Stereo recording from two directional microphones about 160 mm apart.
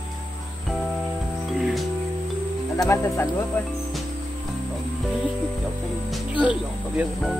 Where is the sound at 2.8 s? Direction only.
15° left (ahead or behind).